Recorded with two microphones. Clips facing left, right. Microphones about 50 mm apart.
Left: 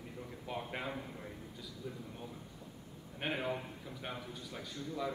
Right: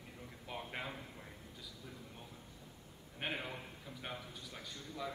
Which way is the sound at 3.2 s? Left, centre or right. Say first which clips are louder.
Left 5 dB; centre.